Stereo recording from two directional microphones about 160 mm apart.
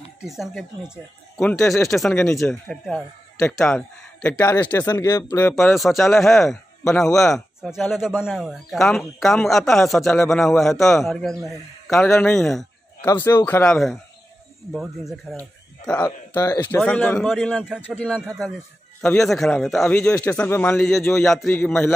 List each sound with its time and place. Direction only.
0.2 s a man's voice: centre (ahead or behind); by 5.8 s 15° left (ahead or behind)
5.8 s speech: centre (ahead or behind)
13.0 s a man's voice: 15° left (ahead or behind)
14.7 s speech: centre (ahead or behind)
16.3 s a man's voice: 20° left (ahead or behind)
16.8 s a man's voice: 10° left (ahead or behind)
17.3 s speech: centre (ahead or behind)
17.8 s a man's voice: 10° left (ahead or behind)